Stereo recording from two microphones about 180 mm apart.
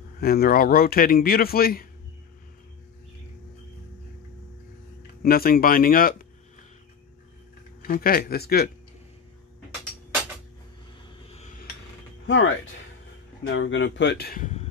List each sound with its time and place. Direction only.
0.2 s a man's voice: 60° left (ahead or behind)
5.2 s speech: 55° left (ahead or behind)
7.8 s a man's voice: 55° left (ahead or behind)
12.3 s speech: 90° left; by 14.4 s 65° left (ahead or behind)
14.4 s a sound: 40° left (ahead or behind)